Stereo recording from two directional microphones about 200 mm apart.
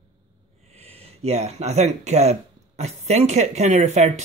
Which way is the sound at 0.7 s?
30° right (ahead or behind).